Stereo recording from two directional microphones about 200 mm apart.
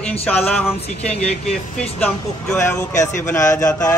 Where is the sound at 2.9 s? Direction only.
40° left (ahead or behind).